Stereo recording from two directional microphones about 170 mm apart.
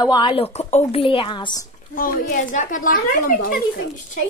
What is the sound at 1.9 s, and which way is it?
A woman's voice, 55° left (ahead or behind).